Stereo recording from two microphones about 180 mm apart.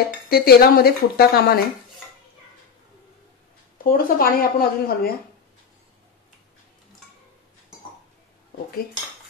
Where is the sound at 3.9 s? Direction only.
55° left (ahead or behind).